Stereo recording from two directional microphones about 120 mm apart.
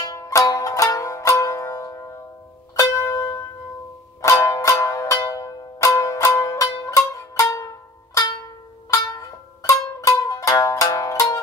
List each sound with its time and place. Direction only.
0.1 s music: 25° left (ahead or behind)